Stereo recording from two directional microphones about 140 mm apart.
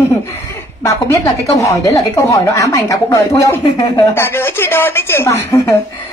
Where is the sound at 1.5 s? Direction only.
20° left (ahead or behind).